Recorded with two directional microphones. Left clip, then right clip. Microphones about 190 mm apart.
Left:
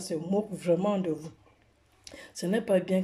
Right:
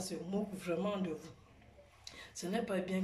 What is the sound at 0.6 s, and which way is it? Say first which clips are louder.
Speech: left 11 dB; 40° left (ahead or behind).